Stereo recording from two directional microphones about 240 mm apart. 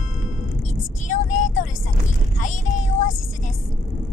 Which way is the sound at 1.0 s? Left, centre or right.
Left.